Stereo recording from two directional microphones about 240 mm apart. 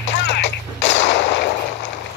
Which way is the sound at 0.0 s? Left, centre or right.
Left.